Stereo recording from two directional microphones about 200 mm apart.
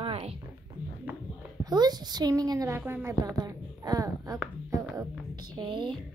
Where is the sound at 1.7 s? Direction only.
20° right (ahead or behind).